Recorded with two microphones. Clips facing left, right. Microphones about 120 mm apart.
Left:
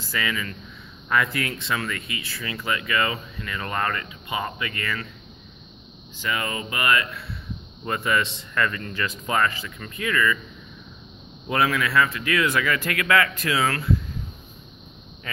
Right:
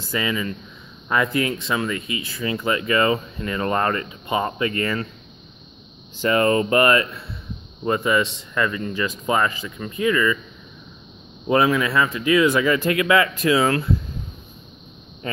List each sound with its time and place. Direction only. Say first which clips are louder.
0.1 s speech: right 4 dB; 25° right (ahead or behind)
6.2 s speech: right 11 dB; 40° right (ahead or behind)
7.8 s speech: right 5 dB; 20° right (ahead or behind)
11.4 s speech: right 5 dB; 20° right (ahead or behind)